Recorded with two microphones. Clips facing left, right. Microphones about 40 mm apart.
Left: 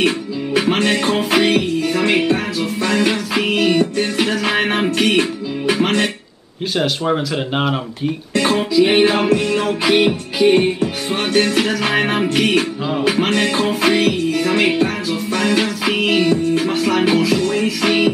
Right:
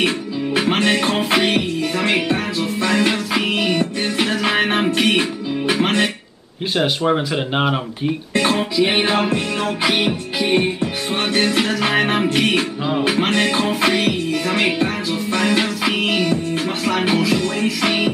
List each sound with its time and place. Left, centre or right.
0.6 s music: centre
3.1 s music: centre
5.7 s speech: centre
6.8 s music: centre
13.7 s music: right
14.3 s music: centre